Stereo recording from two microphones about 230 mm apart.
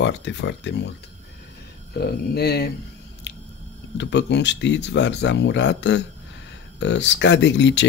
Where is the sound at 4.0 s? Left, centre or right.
Left.